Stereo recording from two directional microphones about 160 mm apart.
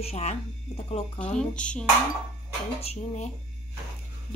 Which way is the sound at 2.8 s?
40° left (ahead or behind).